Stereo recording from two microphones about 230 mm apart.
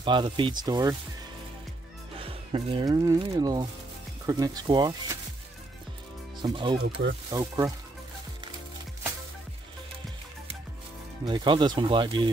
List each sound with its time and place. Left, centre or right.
0.0 s speech: right
2.1 s speech: right
6.4 s speech: centre
11.2 s speech: centre